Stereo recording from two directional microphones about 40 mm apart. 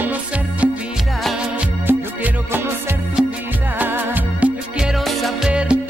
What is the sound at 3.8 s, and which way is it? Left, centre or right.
Music, right.